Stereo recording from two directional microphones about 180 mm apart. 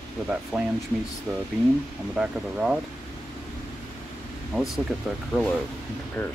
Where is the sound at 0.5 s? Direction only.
5° left (ahead or behind).